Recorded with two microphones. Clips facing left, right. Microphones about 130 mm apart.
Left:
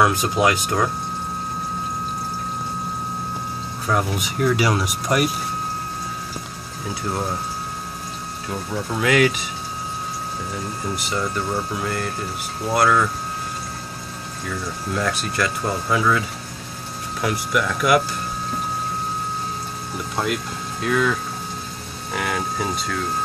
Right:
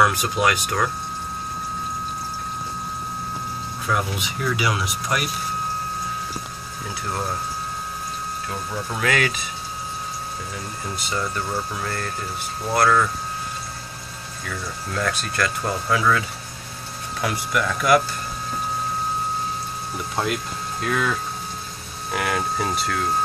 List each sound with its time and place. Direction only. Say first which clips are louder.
0.0 s speech: left 2 dB; 25° left (ahead or behind)
3.9 s speech: left 3 dB; 40° left (ahead or behind)
9.0 s speech: left 5 dB; 15° left (ahead or behind)
11.1 s speech: left 1 dB; 10° left (ahead or behind)
15.0 s speech: left 1 dB; 15° left (ahead or behind)
17.2 s speech: left 2 dB; centre (ahead or behind)
20.8 s speech: left 3 dB; centre (ahead or behind)